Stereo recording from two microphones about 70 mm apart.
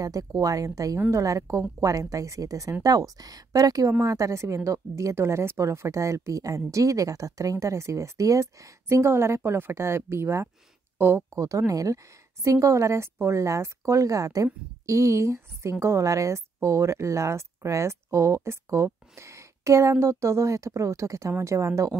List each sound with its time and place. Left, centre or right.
0.0 s speech: right
2.8 s speech: right
11.3 s speech: right